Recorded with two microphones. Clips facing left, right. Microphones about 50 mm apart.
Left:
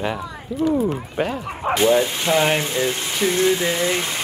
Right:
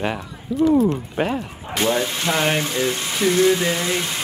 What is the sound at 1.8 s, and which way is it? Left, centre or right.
Speech, centre.